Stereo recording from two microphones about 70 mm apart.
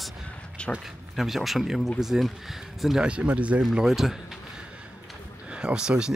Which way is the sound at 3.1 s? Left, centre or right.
Centre.